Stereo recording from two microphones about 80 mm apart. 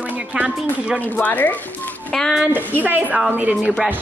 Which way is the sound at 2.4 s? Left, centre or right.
Right.